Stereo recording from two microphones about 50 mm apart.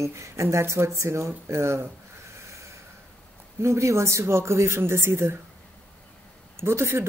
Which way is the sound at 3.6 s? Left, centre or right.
Right.